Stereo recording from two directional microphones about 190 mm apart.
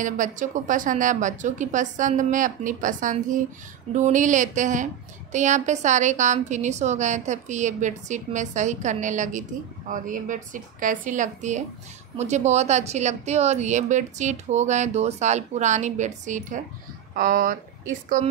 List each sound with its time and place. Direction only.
0.0 s speech: 40° right (ahead or behind)